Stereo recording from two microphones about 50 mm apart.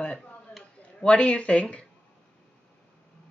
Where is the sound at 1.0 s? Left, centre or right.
Left.